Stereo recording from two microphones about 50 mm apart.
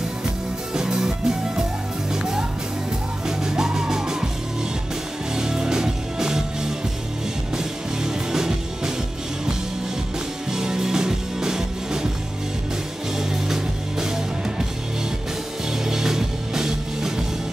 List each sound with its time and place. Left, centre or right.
0.7 s music: centre
3.3 s music: centre
5.3 s music: centre
10.5 s music: centre
13.2 s music: centre
15.8 s music: centre